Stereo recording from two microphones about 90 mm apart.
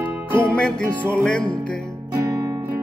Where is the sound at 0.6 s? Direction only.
10° left (ahead or behind).